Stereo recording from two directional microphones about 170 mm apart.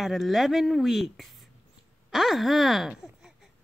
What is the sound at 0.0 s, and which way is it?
Speech, centre (ahead or behind).